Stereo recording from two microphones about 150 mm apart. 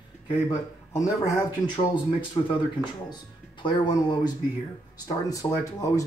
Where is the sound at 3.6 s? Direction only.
30° left (ahead or behind).